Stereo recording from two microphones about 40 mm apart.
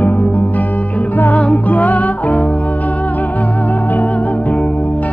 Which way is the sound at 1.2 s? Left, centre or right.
Left.